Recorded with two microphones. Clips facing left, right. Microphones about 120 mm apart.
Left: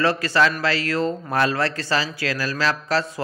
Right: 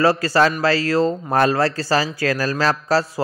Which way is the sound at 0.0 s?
35° right (ahead or behind).